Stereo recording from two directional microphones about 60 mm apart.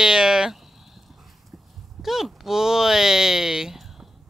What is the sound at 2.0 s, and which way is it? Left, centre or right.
Speech, centre.